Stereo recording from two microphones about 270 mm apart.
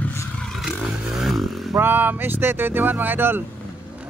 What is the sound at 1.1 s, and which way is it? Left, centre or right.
Vehicle, centre.